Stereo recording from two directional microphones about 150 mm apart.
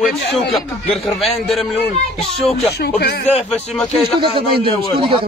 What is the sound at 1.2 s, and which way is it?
Speech, centre (ahead or behind).